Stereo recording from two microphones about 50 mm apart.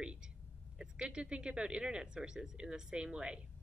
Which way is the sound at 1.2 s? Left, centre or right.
Right.